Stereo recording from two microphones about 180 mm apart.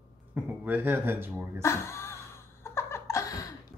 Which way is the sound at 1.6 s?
15° left (ahead or behind).